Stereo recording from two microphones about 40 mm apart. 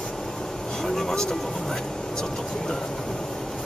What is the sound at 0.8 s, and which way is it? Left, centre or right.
Vehicle, centre.